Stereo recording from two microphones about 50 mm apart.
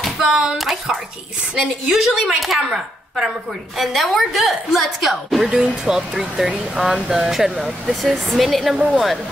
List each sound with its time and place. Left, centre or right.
0.3 s a woman's voice: centre